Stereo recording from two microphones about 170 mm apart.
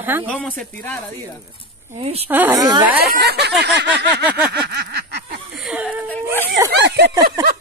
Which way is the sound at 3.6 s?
85° right.